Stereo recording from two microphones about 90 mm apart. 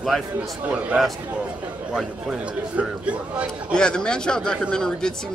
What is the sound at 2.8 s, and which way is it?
Speech, 15° right (ahead or behind).